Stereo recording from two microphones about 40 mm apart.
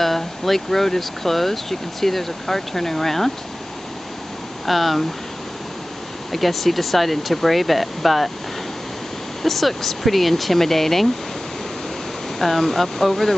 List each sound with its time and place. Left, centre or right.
0.0 s speech: centre
4.6 s speech: centre
6.3 s speech: centre
9.4 s speech: centre
12.4 s speech: centre